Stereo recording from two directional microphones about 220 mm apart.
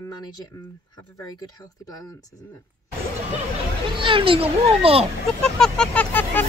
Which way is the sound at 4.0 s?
25° right (ahead or behind).